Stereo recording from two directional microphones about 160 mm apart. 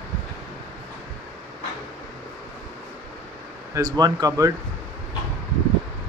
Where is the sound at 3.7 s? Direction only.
25° right (ahead or behind).